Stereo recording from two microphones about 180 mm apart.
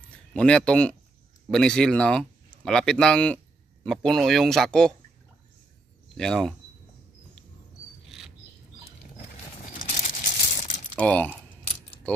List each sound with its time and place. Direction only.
0.3 s speech: 5° left (ahead or behind)
6.1 s speech: 5° left (ahead or behind)
9.8 s a sound: 45° left (ahead or behind)
11.0 s speech: 10° left (ahead or behind)